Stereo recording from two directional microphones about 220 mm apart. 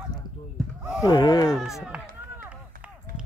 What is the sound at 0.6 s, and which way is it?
Basketball bounce, 5° left (ahead or behind).